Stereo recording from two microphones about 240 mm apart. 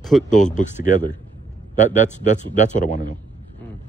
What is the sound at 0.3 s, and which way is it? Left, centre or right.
A man's voice, left.